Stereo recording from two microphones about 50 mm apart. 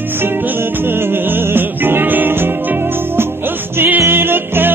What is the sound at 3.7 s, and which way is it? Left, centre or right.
Music, right.